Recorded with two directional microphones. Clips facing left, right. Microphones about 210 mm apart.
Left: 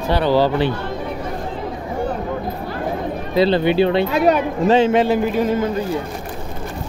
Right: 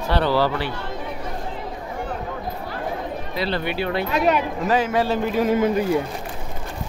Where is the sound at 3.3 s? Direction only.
25° left (ahead or behind).